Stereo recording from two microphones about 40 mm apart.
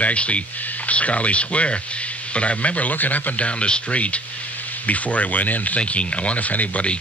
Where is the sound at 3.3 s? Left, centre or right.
Left.